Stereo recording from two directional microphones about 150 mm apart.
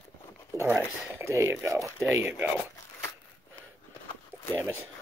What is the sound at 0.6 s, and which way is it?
Speech, 15° right (ahead or behind).